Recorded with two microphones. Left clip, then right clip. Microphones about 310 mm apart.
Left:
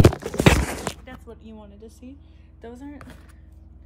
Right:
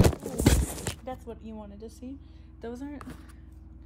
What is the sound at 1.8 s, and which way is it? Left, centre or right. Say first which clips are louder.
Speech: right 1 dB; right.